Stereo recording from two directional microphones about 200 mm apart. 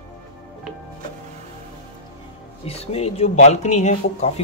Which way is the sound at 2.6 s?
30° left (ahead or behind).